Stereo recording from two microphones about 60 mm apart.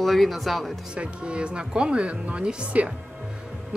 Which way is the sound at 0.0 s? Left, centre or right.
Centre.